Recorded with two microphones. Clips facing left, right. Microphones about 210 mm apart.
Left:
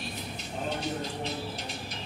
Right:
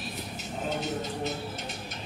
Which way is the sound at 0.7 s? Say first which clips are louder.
Right 3 dB; centre (ahead or behind).